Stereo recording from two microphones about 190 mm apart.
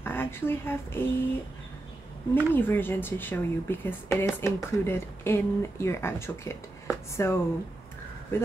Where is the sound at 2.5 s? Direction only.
10° left (ahead or behind).